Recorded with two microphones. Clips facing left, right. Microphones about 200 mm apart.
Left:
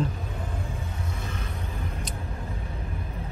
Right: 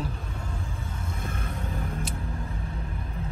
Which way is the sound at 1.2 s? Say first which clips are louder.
Right 1 dB; 50° right (ahead or behind).